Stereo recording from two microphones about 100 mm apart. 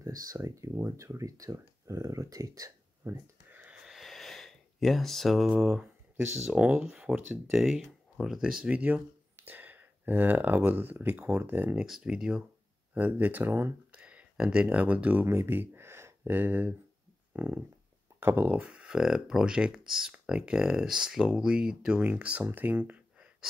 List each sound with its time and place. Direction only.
0.0 s speech: 35° right (ahead or behind)
3.4 s a sound: 15° right (ahead or behind)
6.5 s speech: 10° right (ahead or behind)
11.7 s speech: 5° right (ahead or behind)
12.9 s speech: 20° right (ahead or behind)
15.2 s speech: 25° right (ahead or behind)
17.3 s a sound: 20° right (ahead or behind)
18.2 s speech: 20° right (ahead or behind)